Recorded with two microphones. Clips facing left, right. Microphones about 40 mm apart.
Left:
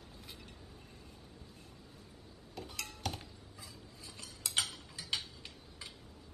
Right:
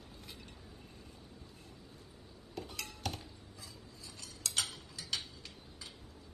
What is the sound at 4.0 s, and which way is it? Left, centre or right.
Mechanisms, left.